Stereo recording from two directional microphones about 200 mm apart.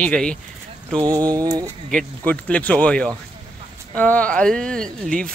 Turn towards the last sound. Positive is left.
turn(degrees=5)  # may be behind; listen again after turning